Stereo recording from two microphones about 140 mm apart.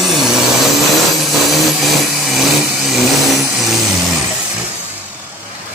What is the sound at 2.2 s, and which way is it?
Vehicle, centre (ahead or behind).